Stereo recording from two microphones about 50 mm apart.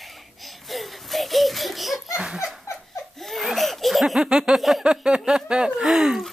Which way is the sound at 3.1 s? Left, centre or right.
Centre.